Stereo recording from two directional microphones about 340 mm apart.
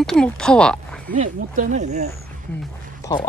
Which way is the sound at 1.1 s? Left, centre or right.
Right.